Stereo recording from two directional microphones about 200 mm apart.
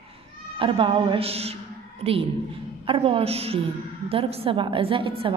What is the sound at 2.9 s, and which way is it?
A woman's voice, 30° right (ahead or behind).